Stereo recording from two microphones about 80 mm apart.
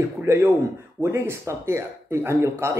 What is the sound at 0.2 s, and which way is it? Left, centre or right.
Speech, right.